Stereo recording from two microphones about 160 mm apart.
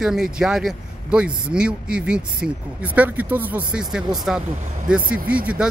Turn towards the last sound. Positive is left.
turn(degrees=-10)  # may be behind; listen again after turning